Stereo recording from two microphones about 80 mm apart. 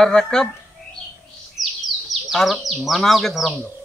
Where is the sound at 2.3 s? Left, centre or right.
Centre.